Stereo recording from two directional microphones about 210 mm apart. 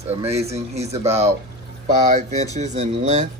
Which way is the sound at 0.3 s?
30° right (ahead or behind).